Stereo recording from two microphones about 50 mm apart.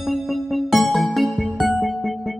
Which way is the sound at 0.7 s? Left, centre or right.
Centre.